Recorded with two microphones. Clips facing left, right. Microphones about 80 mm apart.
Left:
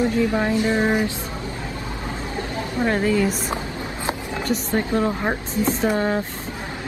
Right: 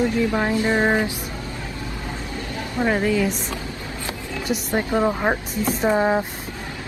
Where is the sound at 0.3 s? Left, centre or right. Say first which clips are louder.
Even; right.